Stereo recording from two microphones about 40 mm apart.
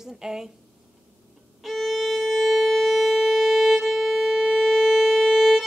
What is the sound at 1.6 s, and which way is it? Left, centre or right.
Violin, centre.